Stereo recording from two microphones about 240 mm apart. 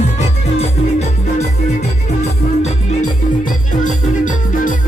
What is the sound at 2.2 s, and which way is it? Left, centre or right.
Music, left.